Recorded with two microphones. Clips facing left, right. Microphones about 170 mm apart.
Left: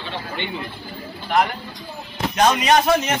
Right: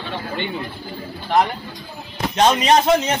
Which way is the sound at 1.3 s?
30° right (ahead or behind).